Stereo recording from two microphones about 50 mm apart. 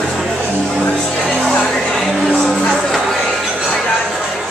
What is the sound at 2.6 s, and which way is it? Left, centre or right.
Music, centre.